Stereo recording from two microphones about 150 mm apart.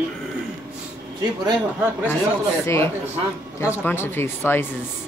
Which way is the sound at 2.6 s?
20° left (ahead or behind).